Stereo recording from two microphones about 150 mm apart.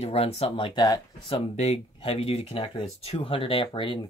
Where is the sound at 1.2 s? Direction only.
45° left (ahead or behind).